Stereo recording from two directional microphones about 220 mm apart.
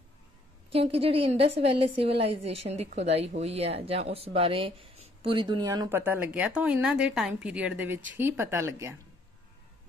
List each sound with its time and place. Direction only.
0.7 s a woman's voice: 25° right (ahead or behind)